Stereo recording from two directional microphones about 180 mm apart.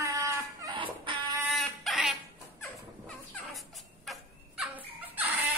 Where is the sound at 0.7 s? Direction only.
30° right (ahead or behind).